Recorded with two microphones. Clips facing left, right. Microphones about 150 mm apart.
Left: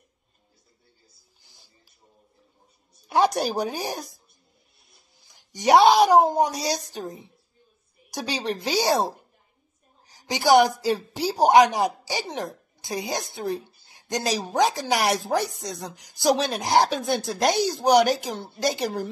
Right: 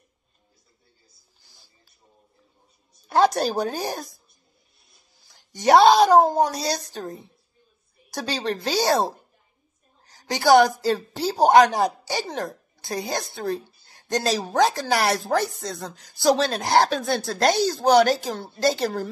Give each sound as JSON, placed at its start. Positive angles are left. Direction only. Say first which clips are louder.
{"t": 3.1, "sound": "a woman's voice", "louder": "right 2 dB", "side_deg": 15}
{"t": 5.3, "sound": "a woman's voice", "louder": "right 1 dB", "side_deg": 15}
{"t": 10.0, "sound": "a woman's voice", "louder": "right 2 dB", "side_deg": 15}